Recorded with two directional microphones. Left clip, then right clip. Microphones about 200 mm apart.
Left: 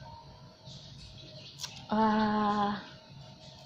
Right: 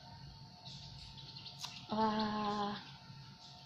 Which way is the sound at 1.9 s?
35° left (ahead or behind).